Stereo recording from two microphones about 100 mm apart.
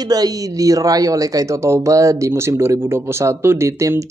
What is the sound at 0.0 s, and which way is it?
A man's voice, 40° right (ahead or behind).